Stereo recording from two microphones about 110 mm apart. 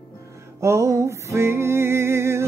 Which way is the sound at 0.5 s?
25° right (ahead or behind).